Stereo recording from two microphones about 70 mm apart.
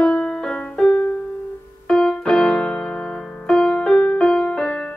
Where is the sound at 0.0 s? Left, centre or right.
Centre.